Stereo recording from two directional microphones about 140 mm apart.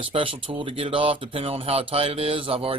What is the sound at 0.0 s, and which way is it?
Speech, 40° right (ahead or behind).